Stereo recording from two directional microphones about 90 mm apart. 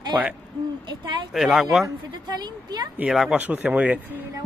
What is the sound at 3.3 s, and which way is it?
Speech, 15° right (ahead or behind).